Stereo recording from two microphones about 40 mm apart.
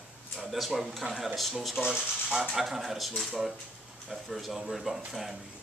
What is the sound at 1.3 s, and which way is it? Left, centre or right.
Speech, centre.